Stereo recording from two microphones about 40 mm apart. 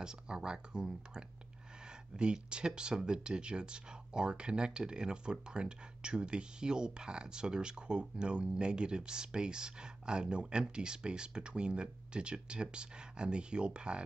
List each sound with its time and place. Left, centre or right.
0.0 s speech: centre
2.1 s speech: right